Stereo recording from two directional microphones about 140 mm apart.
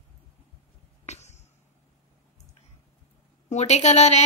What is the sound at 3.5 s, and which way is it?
Speech, 55° left (ahead or behind).